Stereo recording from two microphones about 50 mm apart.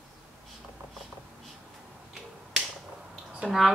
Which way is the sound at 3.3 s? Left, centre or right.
Centre.